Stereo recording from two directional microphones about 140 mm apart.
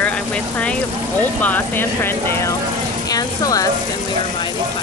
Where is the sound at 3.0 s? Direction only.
25° left (ahead or behind).